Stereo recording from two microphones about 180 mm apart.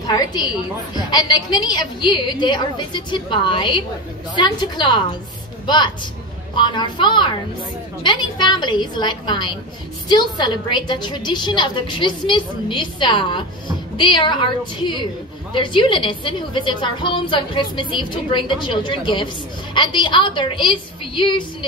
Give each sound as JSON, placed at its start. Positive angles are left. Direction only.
{"t": 0.0, "sound": "a woman's voice", "side_deg": 20}
{"t": 6.5, "sound": "a woman's voice", "side_deg": 25}